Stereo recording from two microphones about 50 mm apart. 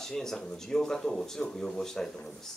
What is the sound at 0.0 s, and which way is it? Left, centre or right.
Speech, centre.